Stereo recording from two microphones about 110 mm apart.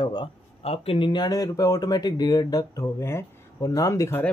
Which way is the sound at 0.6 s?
60° left (ahead or behind).